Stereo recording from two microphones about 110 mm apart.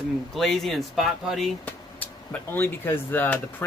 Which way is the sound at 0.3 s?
5° left (ahead or behind).